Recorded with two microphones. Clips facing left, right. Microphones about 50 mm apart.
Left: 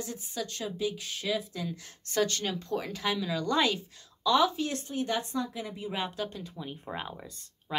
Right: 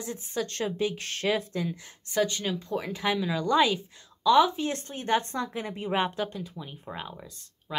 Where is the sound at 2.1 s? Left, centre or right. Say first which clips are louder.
Right 2 dB; centre.